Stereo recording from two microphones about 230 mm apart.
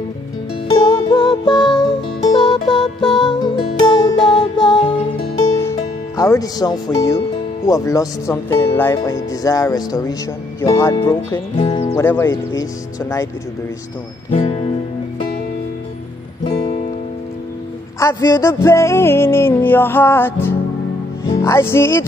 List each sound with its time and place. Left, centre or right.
0.7 s music: centre
14.3 s music: left
16.4 s music: left
17.9 s music: centre